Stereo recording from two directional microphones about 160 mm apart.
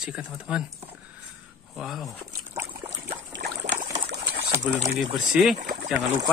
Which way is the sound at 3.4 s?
70° right (ahead or behind).